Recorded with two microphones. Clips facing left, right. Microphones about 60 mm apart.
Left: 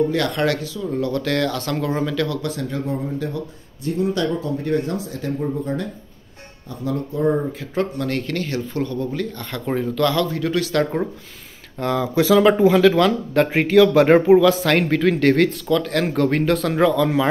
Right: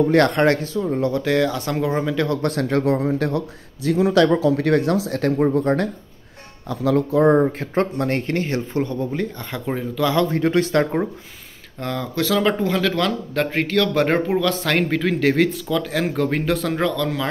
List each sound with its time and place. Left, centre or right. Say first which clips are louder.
0.1 s speech: right 5 dB; right
1.2 s speech: right 2 dB; centre
2.4 s a man's voice: right 6 dB; right
6.7 s speech: right 7 dB; right
7.3 s speech: right 4 dB; right
9.7 s speech: left 3 dB; centre
10.1 s speech: right 3 dB; right
11.8 s speech: left 5 dB; centre